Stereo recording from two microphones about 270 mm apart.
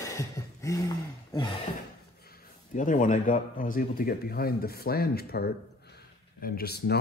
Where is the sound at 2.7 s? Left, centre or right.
Left.